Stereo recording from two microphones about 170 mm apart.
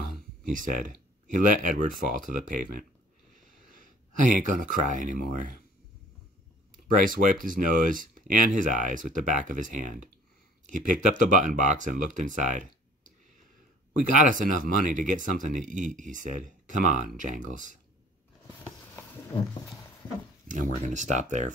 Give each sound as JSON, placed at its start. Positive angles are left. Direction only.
{"t": 0.4, "sound": "speech", "side_deg": -50}
{"t": 6.9, "sound": "speech", "side_deg": -55}
{"t": 14.0, "sound": "speech", "side_deg": -50}
{"t": 18.5, "sound": "a sound", "side_deg": 15}
{"t": 20.4, "sound": "speech", "side_deg": -50}